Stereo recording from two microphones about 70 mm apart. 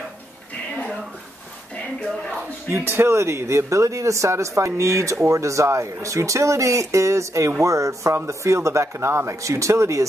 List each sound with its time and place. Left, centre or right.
2.7 s speech: right